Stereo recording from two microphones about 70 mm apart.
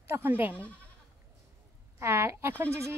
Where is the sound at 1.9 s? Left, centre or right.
Right.